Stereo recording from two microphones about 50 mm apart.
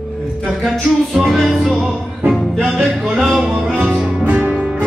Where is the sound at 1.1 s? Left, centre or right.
Centre.